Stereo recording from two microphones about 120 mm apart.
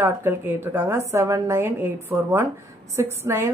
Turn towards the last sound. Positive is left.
turn(degrees=-20)  # may be behind; listen again after turning